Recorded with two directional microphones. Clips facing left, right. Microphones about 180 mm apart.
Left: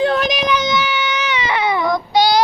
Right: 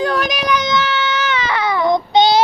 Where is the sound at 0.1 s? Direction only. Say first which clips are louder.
Left 1 dB; 25° left (ahead or behind).